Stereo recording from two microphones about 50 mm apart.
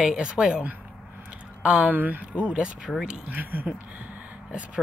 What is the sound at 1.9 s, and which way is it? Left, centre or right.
Speech, right.